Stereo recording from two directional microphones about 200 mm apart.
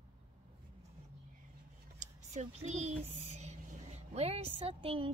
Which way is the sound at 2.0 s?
35° right (ahead or behind).